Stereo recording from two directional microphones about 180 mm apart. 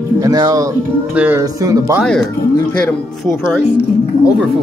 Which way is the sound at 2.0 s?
5° left (ahead or behind).